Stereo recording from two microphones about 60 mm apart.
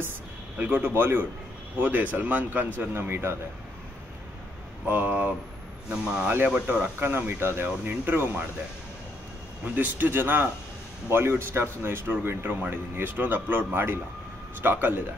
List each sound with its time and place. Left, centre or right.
0.6 s speech: right
2.9 s a man's voice: right
4.8 s speech: right
5.9 s speech: centre
6.4 s speech: right
7.0 s speech: right
9.8 s speech: right